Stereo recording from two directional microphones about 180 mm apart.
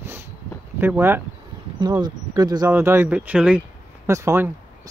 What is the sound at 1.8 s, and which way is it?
Speech, 25° right (ahead or behind).